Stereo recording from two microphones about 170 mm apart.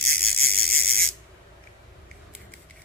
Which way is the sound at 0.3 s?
65° right (ahead or behind).